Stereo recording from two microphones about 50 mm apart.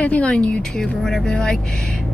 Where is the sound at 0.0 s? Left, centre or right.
Left.